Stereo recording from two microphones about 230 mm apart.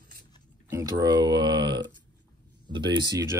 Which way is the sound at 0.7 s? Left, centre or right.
Centre.